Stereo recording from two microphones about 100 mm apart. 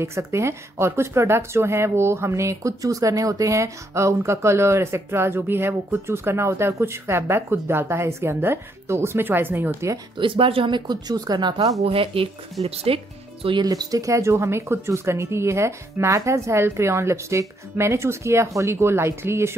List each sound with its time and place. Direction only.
0.0 s speech: 30° right (ahead or behind)
10.1 s speech: 60° right (ahead or behind)
11.8 s speech: 65° right (ahead or behind)
13.7 s speech: 35° right (ahead or behind)